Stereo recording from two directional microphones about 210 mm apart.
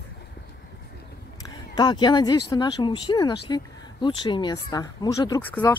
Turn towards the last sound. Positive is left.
turn(degrees=15)  # may be behind; listen again after turning